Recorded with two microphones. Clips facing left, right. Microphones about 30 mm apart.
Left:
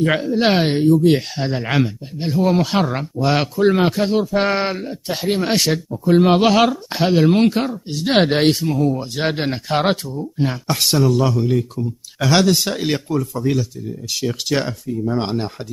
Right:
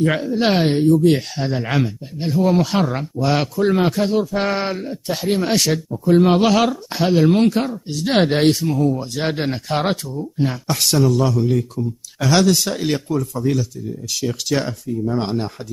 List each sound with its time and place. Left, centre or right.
0.0 s speech: centre